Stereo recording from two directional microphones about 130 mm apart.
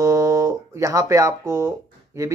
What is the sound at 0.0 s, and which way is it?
Music, 25° right (ahead or behind).